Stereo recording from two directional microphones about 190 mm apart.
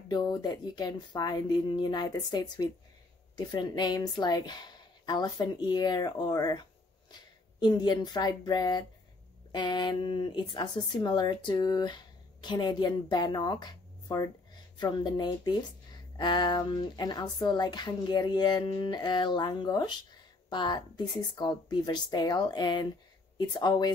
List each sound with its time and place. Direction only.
0.1 s speech: 20° left (ahead or behind)
7.6 s speech: 25° left (ahead or behind)